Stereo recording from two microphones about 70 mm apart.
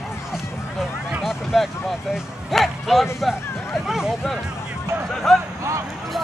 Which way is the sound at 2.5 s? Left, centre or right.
Centre.